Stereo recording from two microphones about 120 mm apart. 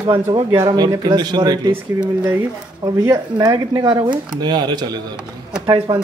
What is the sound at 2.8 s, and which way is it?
Speech, 30° right (ahead or behind).